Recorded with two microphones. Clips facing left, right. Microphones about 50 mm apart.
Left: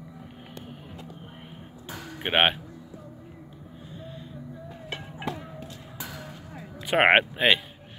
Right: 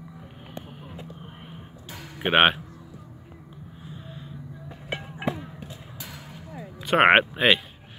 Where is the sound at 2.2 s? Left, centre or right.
Centre.